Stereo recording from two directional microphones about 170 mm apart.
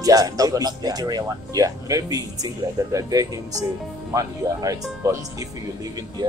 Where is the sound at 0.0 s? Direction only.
20° right (ahead or behind).